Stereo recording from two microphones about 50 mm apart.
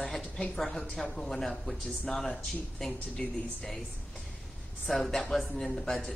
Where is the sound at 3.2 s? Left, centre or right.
Centre.